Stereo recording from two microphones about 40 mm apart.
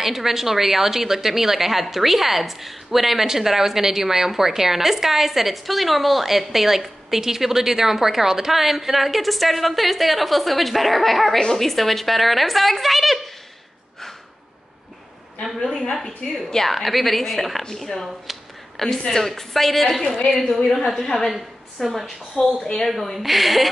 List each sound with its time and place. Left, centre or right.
0.0 s a woman's voice: centre
11.3 s a woman's voice: centre
11.6 s a woman's voice: centre
15.4 s a woman's voice: centre
18.0 s speech: centre
18.8 s a woman's voice: centre
21.3 s a woman's voice: centre
22.4 s speech: left
22.8 s a woman's voice: centre